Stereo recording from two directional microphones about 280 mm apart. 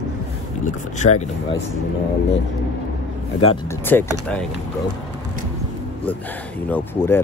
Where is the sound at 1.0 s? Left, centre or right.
Left.